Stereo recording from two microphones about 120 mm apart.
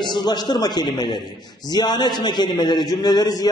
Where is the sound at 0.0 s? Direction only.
35° left (ahead or behind).